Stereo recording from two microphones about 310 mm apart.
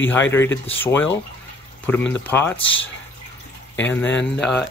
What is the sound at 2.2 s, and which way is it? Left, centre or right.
Speech, centre.